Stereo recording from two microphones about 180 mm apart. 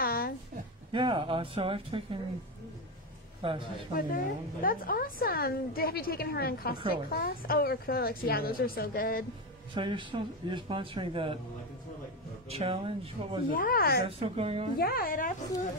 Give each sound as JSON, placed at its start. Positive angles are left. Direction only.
{"t": 0.0, "sound": "a sound", "side_deg": 55}
{"t": 0.9, "sound": "speech", "side_deg": -30}
{"t": 3.9, "sound": "a woman's voice", "side_deg": 50}
{"t": 9.8, "sound": "speech", "side_deg": -25}
{"t": 12.4, "sound": "speech", "side_deg": -35}
{"t": 13.5, "sound": "a woman's voice", "side_deg": 50}
{"t": 14.0, "sound": "speech", "side_deg": -30}
{"t": 14.8, "sound": "a woman's voice", "side_deg": 55}